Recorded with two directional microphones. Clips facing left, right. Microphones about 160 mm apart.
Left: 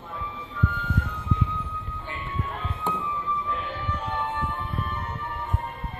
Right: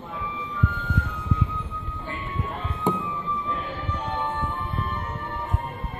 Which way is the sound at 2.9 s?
15° right (ahead or behind).